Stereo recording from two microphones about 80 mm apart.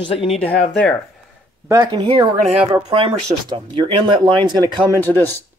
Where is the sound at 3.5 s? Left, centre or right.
Right.